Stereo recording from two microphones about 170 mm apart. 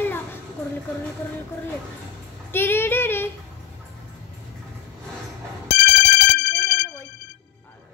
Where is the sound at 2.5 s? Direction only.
15° left (ahead or behind).